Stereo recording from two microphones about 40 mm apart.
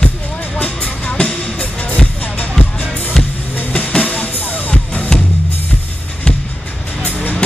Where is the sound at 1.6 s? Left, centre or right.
Left.